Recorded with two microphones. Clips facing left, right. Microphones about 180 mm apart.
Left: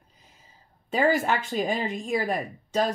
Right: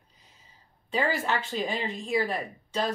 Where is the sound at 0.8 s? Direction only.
45° left (ahead or behind).